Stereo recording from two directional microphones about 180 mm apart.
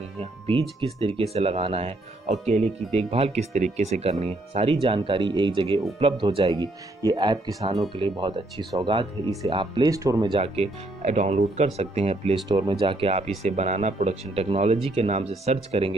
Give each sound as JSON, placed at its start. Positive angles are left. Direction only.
{"t": 0.2, "sound": "speech", "side_deg": -30}
{"t": 10.3, "sound": "speech", "side_deg": -35}